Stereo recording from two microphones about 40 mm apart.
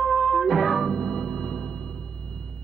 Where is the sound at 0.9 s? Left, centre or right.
Centre.